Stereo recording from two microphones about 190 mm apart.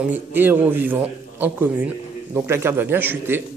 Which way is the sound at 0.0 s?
10° right (ahead or behind).